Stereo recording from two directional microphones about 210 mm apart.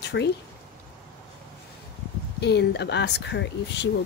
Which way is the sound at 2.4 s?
55° left (ahead or behind).